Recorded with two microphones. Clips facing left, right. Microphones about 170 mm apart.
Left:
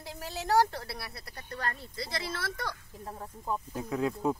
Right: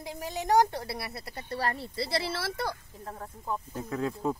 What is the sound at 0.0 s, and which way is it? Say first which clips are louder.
Speech: right 4 dB; 15° right (ahead or behind).